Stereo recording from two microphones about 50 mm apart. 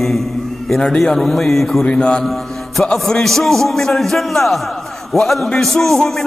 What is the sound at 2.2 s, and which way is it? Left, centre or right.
Music, centre.